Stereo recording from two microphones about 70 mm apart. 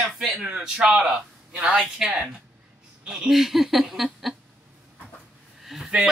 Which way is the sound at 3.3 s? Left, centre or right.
Centre.